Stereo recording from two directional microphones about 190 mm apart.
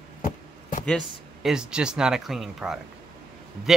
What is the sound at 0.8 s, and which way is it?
Speech, centre (ahead or behind).